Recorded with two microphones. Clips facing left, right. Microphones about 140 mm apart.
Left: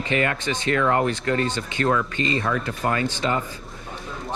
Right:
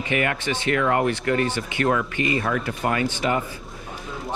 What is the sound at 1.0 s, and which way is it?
Speech, 25° left (ahead or behind).